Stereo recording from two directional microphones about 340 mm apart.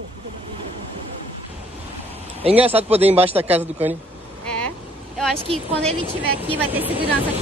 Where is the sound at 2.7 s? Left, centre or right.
Centre.